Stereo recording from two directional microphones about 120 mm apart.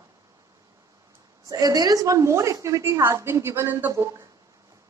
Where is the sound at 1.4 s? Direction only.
30° right (ahead or behind).